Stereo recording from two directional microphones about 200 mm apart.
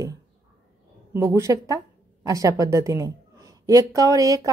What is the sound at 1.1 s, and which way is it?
A woman's voice, 15° right (ahead or behind).